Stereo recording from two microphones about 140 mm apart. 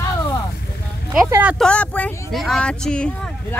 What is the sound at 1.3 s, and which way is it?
Speech, 10° right (ahead or behind).